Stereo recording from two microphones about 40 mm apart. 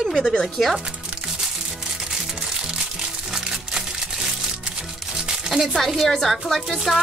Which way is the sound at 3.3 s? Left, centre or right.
Centre.